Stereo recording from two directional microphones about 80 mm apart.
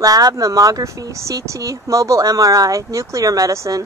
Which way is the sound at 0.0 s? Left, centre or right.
Right.